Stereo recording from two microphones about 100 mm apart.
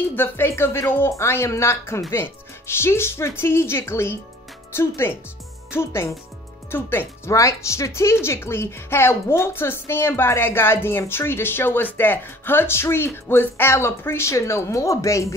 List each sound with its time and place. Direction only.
0.1 s speech: 20° left (ahead or behind)